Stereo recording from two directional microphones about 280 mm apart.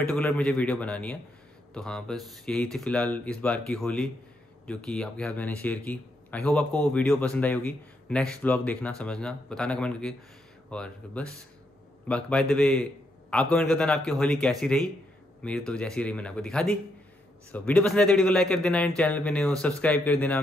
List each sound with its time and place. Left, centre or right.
0.0 s speech: centre